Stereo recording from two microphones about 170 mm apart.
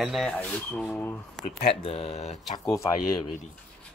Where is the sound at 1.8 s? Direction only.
35° left (ahead or behind).